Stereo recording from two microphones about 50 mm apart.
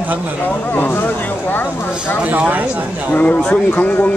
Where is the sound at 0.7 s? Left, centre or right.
Left.